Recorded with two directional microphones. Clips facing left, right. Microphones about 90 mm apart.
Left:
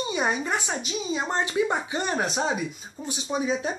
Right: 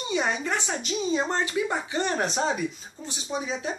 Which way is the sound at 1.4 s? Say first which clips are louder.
Left 2 dB; 20° left (ahead or behind).